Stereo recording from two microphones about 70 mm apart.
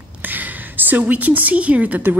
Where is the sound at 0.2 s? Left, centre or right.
Right.